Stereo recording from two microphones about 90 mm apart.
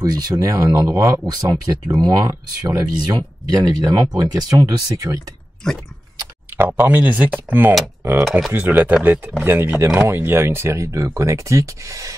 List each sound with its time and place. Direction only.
0.0 s speech: 45° right (ahead or behind)
5.6 s a sound: 5° left (ahead or behind)
6.5 s speech: 20° right (ahead or behind)
8.3 s speech: centre (ahead or behind)
8.5 s speech: 20° right (ahead or behind); by 12.2 s 35° right (ahead or behind)